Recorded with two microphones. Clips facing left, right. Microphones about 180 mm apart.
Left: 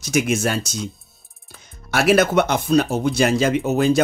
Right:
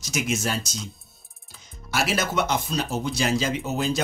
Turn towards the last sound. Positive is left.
turn(degrees=60)  # may be behind; listen again after turning